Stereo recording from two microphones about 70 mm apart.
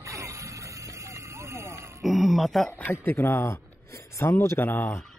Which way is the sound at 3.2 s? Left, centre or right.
Left.